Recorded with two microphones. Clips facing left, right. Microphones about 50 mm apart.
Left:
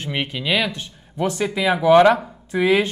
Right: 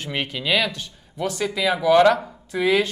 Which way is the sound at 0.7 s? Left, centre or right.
Left.